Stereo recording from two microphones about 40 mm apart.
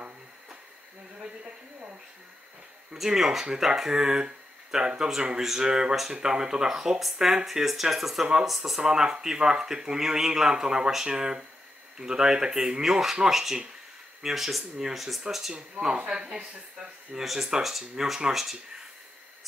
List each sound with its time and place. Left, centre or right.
3.0 s speech: centre
8.8 s speech: centre
12.8 s speech: centre
16.1 s speech: right
17.1 s speech: centre